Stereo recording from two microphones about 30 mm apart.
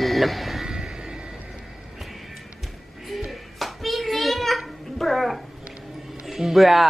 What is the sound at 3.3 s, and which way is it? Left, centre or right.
Hands, centre.